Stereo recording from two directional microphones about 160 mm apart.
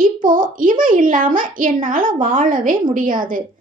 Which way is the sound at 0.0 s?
60° right (ahead or behind).